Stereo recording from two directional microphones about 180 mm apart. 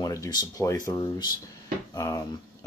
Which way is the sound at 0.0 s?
20° left (ahead or behind).